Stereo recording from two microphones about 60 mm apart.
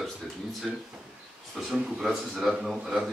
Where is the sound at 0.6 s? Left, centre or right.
Centre.